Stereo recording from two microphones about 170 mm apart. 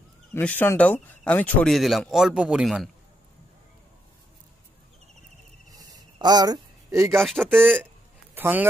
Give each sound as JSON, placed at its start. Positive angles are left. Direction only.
{"t": 0.3, "sound": "speech", "side_deg": 10}
{"t": 5.7, "sound": "a sound", "side_deg": -20}
{"t": 7.2, "sound": "speech", "side_deg": 0}
{"t": 8.4, "sound": "speech", "side_deg": -10}